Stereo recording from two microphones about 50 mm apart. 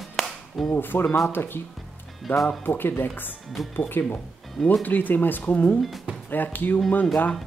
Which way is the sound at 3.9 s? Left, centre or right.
Left.